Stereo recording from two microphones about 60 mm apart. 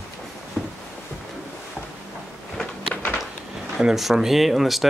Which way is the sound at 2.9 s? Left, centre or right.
Left.